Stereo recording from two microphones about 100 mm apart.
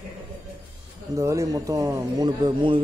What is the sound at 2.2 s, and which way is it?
Speech, 50° right (ahead or behind).